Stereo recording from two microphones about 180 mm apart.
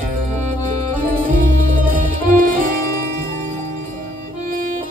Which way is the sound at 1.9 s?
45° right (ahead or behind).